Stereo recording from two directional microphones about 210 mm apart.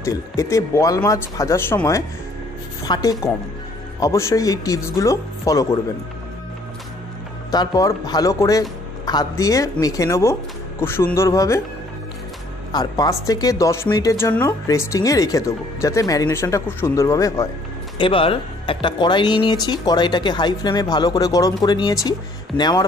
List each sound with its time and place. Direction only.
0.0 s speech: 15° left (ahead or behind)
7.5 s speech: 20° left (ahead or behind)
12.7 s speech: 20° left (ahead or behind)
17.9 s speech: 25° left (ahead or behind)